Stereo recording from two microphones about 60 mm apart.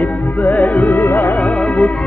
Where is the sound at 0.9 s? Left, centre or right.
Left.